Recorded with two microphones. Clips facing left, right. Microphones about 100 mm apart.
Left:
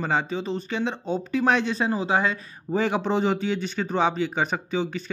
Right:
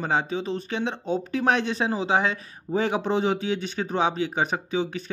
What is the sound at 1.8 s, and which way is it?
Speech, 25° right (ahead or behind).